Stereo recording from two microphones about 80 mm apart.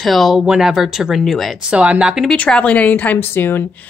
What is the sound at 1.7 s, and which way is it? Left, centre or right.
Speech, centre.